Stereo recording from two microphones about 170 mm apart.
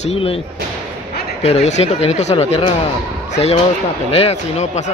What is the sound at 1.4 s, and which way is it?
Speech, 40° left (ahead or behind).